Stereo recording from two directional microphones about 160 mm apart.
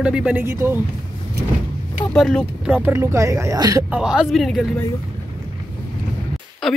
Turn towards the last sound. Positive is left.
turn(degrees=0)  # may be behind; listen again after turning